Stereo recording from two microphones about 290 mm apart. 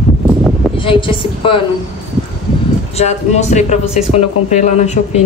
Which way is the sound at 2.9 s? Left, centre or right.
Left.